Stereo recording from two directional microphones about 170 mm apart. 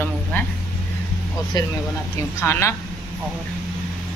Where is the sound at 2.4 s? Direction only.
15° left (ahead or behind).